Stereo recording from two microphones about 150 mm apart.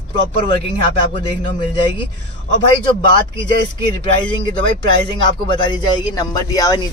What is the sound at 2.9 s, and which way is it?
Speech, 35° left (ahead or behind).